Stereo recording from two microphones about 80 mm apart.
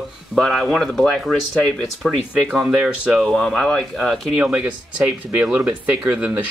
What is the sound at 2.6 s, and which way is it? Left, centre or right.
Speech, centre.